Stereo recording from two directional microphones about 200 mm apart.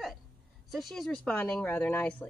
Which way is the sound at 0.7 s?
Centre (ahead or behind).